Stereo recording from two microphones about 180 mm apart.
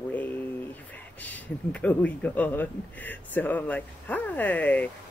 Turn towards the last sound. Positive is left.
turn(degrees=10)  # may be behind; listen again after turning